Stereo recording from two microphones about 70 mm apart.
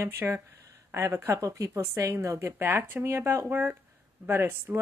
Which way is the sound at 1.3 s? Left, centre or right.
Right.